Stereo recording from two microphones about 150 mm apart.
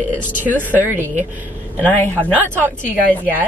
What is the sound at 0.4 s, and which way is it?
Speech, 10° right (ahead or behind).